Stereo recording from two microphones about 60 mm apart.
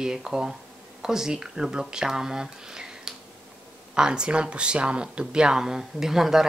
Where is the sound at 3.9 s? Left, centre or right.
Centre.